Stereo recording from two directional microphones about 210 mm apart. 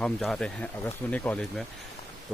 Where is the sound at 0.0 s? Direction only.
Centre (ahead or behind).